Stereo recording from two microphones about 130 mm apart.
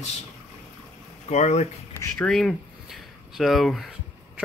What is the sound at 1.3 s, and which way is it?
Speech, 60° left (ahead or behind).